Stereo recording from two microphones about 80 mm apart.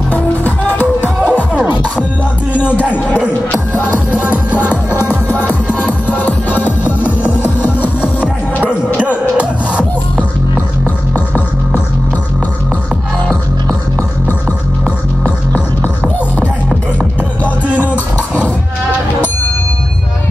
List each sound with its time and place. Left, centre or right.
0.1 s music: left
1.2 s music: centre
4.1 s music: centre
4.5 s music: left
8.2 s music: centre
11.1 s music: left
17.9 s beatboxing: left